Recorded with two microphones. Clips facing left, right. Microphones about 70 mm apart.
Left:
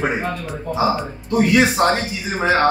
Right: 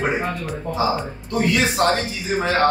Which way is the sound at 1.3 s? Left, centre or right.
Left.